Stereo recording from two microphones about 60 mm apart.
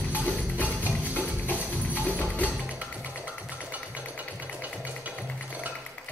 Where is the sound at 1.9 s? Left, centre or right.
Left.